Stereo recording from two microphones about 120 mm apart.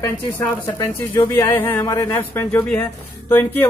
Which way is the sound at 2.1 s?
15° left (ahead or behind).